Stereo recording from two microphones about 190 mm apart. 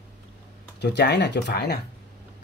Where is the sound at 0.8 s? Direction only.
60° left (ahead or behind).